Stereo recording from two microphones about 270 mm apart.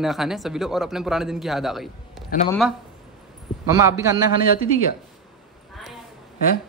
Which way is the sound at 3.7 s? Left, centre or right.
Centre.